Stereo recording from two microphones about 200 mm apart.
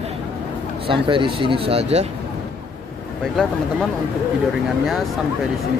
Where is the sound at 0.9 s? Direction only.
25° right (ahead or behind).